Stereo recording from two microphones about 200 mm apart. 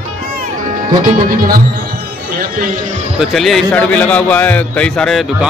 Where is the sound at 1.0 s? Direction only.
45° right (ahead or behind).